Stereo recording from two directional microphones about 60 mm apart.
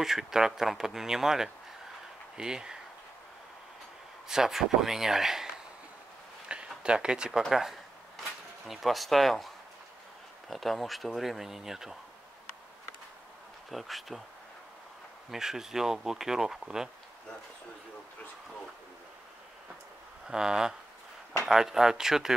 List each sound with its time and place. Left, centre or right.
0.0 s speech: centre
4.3 s speech: centre
6.8 s speech: centre
7.4 s a sound: centre
10.5 s speech: centre
13.7 s speech: centre
15.3 s speech: centre
20.2 s speech: centre